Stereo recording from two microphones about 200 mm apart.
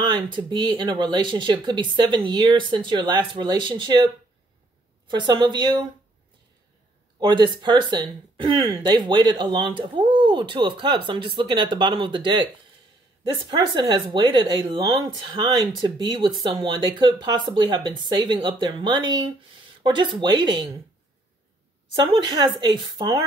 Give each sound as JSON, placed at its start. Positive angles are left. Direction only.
{"t": 0.0, "sound": "speech", "side_deg": -20}
{"t": 5.1, "sound": "speech", "side_deg": -20}
{"t": 7.2, "sound": "speech", "side_deg": -20}
{"t": 21.9, "sound": "speech", "side_deg": -20}